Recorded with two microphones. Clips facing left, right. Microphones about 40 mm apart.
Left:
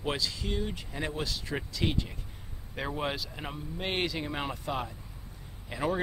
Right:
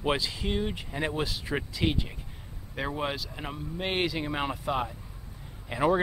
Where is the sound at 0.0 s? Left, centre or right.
Right.